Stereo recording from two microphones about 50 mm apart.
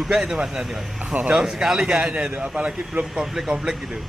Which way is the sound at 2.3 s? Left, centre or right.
Right.